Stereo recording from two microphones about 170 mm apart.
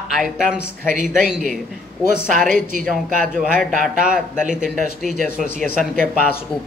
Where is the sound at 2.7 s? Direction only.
50° right (ahead or behind).